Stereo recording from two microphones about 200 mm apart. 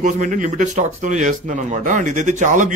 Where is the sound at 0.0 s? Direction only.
40° right (ahead or behind).